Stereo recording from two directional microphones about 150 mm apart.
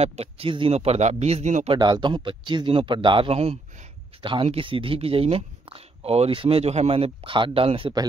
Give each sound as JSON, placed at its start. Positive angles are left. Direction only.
{"t": 0.0, "sound": "a man's voice", "side_deg": -45}
{"t": 1.7, "sound": "speech", "side_deg": -30}